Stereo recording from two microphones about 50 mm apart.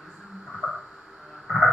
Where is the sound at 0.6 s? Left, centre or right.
Centre.